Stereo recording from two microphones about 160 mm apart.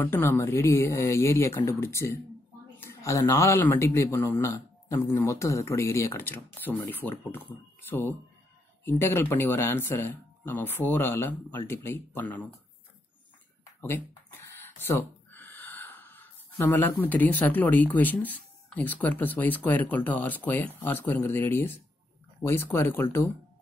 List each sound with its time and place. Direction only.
0.0 s speech: 15° left (ahead or behind)
13.7 s a sound: 15° left (ahead or behind)
14.9 s gasp: 10° left (ahead or behind)
17.0 s speech: 10° left (ahead or behind)